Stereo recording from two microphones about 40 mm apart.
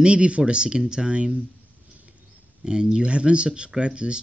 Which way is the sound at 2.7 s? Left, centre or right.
Centre.